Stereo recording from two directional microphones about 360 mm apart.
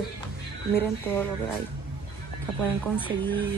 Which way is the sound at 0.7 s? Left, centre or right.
Centre.